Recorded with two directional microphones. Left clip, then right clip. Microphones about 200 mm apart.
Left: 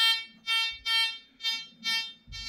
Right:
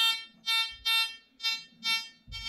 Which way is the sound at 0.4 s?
25° right (ahead or behind).